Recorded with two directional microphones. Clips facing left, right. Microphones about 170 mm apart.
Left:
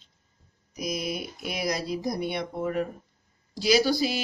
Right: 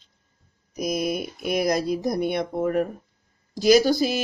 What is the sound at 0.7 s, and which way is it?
Speech, 50° right (ahead or behind).